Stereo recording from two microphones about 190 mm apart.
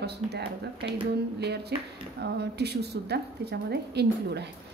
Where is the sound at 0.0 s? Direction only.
60° right (ahead or behind).